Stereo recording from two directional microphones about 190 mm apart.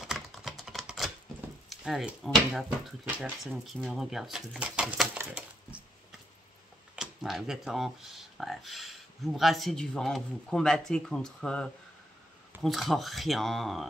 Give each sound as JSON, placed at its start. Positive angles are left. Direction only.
{"t": 0.0, "sound": "typing", "side_deg": 0}
{"t": 1.7, "sound": "speech", "side_deg": 0}
{"t": 7.0, "sound": "speech", "side_deg": 0}